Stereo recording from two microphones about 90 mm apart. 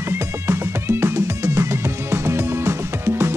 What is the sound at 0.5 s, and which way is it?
Music, 30° right (ahead or behind).